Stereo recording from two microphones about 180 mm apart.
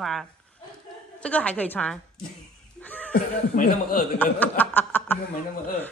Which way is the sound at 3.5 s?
50° left (ahead or behind).